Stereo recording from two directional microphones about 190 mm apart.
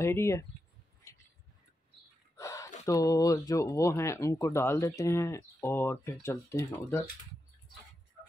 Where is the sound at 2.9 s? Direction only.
20° left (ahead or behind).